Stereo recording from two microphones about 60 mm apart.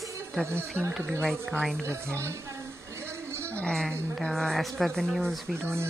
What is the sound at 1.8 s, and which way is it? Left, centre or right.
Speech, right.